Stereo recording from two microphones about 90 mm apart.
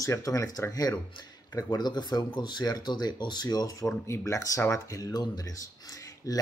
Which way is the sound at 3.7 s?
30° left (ahead or behind).